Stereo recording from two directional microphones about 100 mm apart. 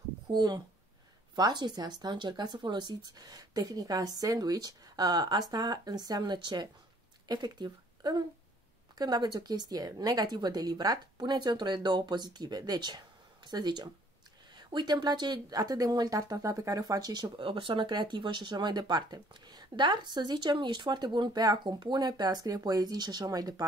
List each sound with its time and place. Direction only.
0.3 s speech: 40° right (ahead or behind)
17.4 s speech: 60° right (ahead or behind); by 23.6 s 40° right (ahead or behind)